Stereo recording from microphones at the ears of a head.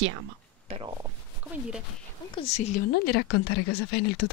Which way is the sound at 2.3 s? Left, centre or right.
Left.